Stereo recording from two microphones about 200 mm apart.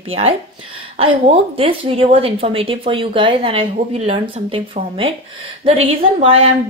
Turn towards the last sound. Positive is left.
turn(degrees=-30)  # may be behind; listen again after turning